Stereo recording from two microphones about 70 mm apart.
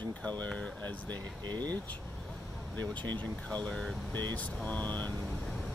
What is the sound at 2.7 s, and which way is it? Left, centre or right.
Speech, left.